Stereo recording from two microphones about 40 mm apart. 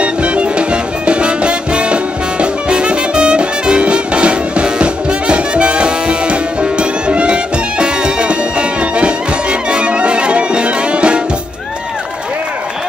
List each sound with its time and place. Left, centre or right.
0.0 s music: right